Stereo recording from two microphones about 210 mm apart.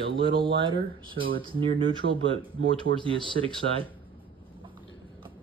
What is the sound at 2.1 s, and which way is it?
Speech, 25° right (ahead or behind).